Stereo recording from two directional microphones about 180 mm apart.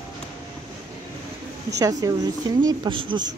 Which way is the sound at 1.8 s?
20° right (ahead or behind).